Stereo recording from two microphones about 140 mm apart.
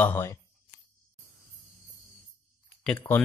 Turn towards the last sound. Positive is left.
turn(degrees=10)  # may be behind; listen again after turning